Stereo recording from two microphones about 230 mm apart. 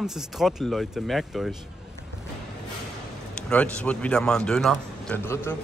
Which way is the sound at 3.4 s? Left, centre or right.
Centre.